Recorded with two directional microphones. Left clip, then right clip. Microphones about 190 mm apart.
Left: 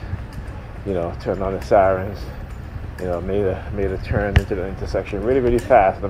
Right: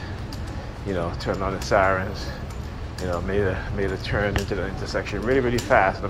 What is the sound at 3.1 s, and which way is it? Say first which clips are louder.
Speech: left 3 dB; 50° left (ahead or behind).